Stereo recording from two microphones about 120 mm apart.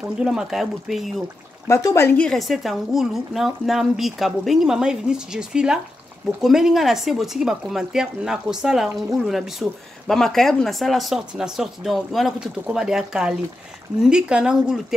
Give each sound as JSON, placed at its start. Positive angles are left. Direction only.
{"t": 0.2, "sound": "speech", "side_deg": -5}
{"t": 1.7, "sound": "speech", "side_deg": 25}
{"t": 2.1, "sound": "speech", "side_deg": 5}